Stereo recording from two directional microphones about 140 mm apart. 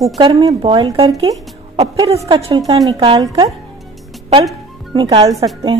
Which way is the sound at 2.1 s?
45° right (ahead or behind).